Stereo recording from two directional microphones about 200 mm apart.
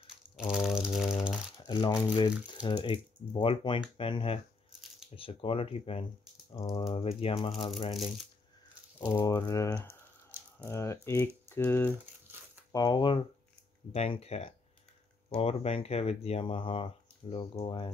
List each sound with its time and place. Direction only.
0.4 s a sound: centre (ahead or behind)
1.6 s speech: 20° left (ahead or behind)
7.9 s speech: centre (ahead or behind)
9.1 s speech: 15° left (ahead or behind)